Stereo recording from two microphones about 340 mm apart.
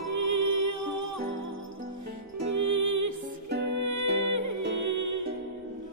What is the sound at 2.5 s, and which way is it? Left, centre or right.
Music, right.